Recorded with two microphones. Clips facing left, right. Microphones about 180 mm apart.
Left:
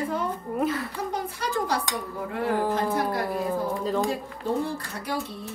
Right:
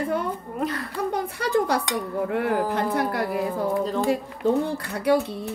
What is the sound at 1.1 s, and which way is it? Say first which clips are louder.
A woman's voice: right 6 dB; 60° right (ahead or behind).